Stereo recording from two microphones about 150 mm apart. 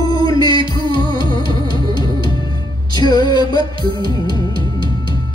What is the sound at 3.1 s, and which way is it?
Music, 25° left (ahead or behind).